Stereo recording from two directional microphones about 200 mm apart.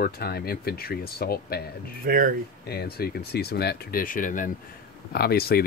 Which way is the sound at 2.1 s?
45° right (ahead or behind).